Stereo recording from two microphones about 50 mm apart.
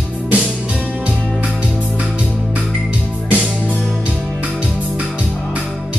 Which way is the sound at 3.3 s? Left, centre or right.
Right.